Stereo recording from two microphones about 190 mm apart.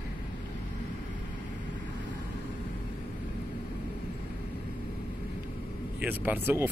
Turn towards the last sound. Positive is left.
turn(degrees=-10)  # may be behind; listen again after turning